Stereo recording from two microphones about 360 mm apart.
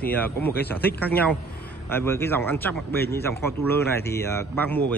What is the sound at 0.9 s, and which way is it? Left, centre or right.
A man's voice, centre.